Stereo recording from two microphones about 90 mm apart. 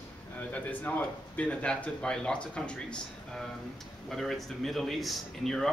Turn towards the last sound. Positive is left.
turn(degrees=5)  # may be behind; listen again after turning